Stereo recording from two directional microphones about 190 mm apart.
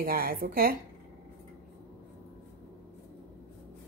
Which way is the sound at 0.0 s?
50° right (ahead or behind).